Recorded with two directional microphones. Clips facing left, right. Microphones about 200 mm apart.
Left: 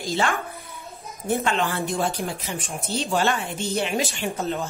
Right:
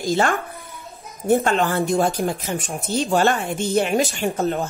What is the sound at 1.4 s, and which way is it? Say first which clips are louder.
Speech: right 5 dB; 45° right (ahead or behind).